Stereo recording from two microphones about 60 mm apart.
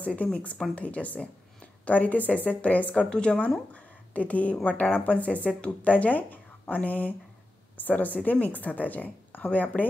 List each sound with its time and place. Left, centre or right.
0.0 s speech: left
3.7 s a sound: left
4.6 s speech: left